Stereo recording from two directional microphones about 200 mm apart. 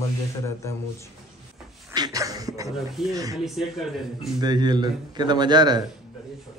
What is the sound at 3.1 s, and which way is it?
Speech, 15° right (ahead or behind).